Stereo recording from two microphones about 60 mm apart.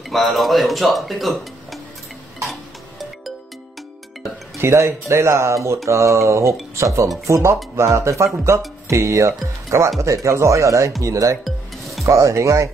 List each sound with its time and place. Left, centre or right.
0.1 s speech: centre
4.6 s speech: right
11.4 s music: centre
12.1 s speech: right